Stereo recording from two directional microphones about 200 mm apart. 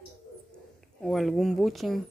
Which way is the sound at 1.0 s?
Centre (ahead or behind).